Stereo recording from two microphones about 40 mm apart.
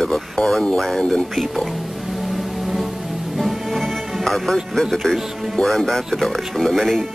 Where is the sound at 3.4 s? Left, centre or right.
Centre.